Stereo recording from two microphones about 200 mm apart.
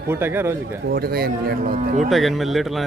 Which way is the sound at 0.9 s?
50° right (ahead or behind).